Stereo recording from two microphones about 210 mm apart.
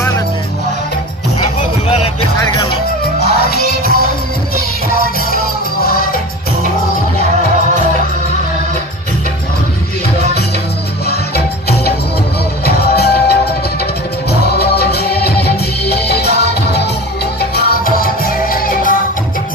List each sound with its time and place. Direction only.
2.3 s music: 15° left (ahead or behind)
3.2 s music: 50° left (ahead or behind)
11.1 s music: 50° left (ahead or behind)
14.4 s music: 50° left (ahead or behind)